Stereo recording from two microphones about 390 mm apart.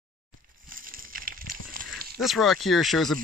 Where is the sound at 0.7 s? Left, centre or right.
Right.